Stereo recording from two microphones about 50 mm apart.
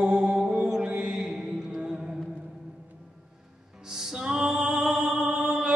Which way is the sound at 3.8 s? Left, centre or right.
Centre.